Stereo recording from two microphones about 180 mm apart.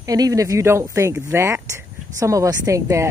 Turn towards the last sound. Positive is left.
turn(degrees=-15)  # may be behind; listen again after turning